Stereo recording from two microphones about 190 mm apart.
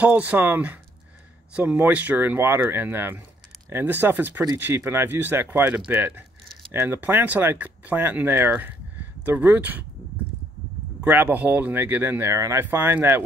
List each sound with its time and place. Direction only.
0.0 s speech: 10° right (ahead or behind)
11.0 s speech: 10° right (ahead or behind)